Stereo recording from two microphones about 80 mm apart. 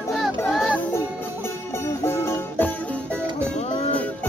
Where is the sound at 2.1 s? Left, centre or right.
Left.